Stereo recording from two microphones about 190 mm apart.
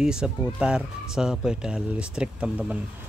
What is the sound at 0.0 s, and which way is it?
Speech, 5° right (ahead or behind).